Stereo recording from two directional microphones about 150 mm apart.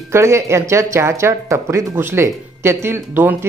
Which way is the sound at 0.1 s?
20° right (ahead or behind).